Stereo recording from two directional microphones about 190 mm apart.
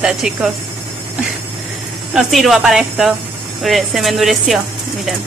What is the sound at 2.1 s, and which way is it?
Speech, centre (ahead or behind).